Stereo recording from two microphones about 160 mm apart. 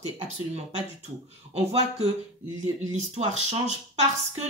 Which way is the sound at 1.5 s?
40° right (ahead or behind).